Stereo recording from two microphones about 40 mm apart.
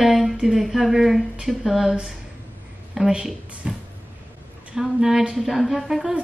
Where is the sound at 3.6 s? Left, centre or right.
Right.